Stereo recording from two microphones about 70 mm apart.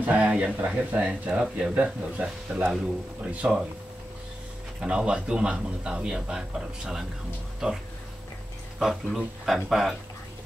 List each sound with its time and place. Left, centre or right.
0.0 s speech: centre
4.7 s speech: centre